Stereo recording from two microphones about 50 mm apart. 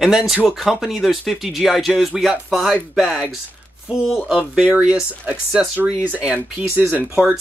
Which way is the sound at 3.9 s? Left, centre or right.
Centre.